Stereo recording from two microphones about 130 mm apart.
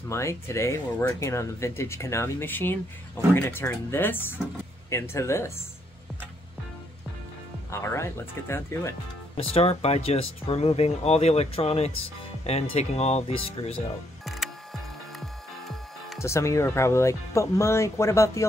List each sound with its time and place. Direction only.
0.1 s speech: 20° left (ahead or behind)
7.7 s speech: 20° left (ahead or behind)
9.4 s speech: 50° left (ahead or behind)
14.2 s music: centre (ahead or behind)
16.2 s speech: 20° left (ahead or behind)